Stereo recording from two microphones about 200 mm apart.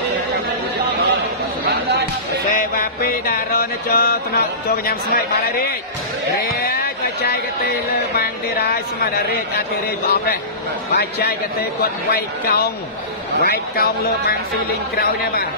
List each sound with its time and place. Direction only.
2.5 s music: 45° left (ahead or behind)
6.6 s a sound: 50° left (ahead or behind)
8.2 s music: 50° left (ahead or behind)
10.0 s music: 50° left (ahead or behind)